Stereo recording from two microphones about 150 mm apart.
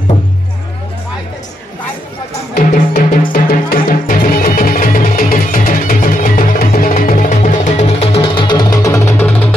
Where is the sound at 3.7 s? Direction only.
70° left (ahead or behind).